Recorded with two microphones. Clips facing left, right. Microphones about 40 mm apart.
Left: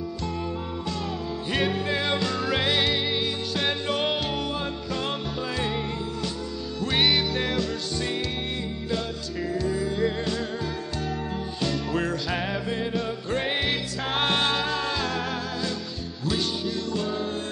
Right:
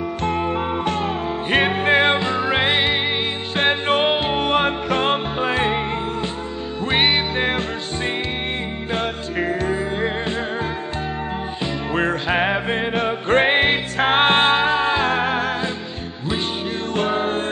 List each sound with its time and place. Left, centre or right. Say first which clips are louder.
0.2 s music: right 12 dB; right
2.1 s music: right 6 dB; right
4.5 s music: right 11 dB; right
6.9 s music: right 4 dB; right
8.9 s music: right 7 dB; right
11.6 s music: right 5 dB; right
16.9 s music: right 8 dB; right